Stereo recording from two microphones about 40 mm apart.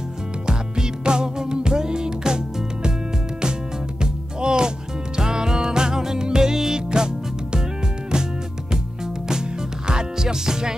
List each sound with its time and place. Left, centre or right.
0.5 s music: centre
4.0 s music: right
8.7 s music: centre